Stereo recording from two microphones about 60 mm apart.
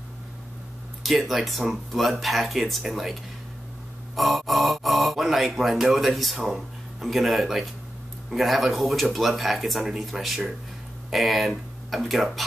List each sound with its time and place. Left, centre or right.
1.0 s speech: centre